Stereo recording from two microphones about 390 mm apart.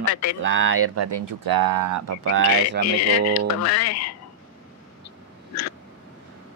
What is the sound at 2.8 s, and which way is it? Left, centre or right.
Speech, left.